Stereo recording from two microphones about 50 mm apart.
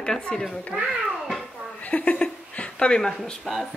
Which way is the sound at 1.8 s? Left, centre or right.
Left.